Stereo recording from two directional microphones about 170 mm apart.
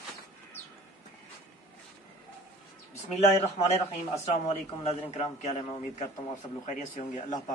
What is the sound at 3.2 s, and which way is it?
Speech, 40° left (ahead or behind).